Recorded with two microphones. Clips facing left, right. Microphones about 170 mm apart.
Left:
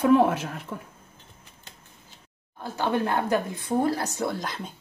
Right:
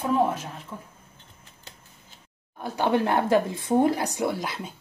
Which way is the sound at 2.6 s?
20° right (ahead or behind).